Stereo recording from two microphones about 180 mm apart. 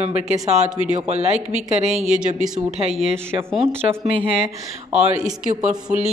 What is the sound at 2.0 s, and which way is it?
Speech, 5° right (ahead or behind).